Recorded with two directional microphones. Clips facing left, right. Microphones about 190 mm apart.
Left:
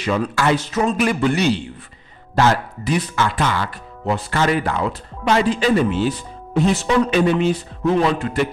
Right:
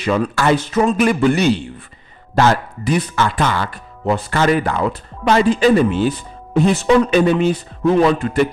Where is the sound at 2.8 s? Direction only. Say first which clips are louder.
Right 3 dB; 50° right (ahead or behind).